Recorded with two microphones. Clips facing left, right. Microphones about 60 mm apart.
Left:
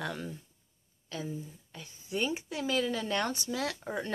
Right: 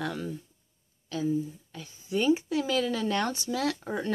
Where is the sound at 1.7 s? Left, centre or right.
Centre.